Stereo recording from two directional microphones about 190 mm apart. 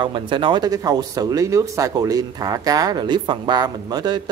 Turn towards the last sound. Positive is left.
turn(degrees=-20)  # may be behind; listen again after turning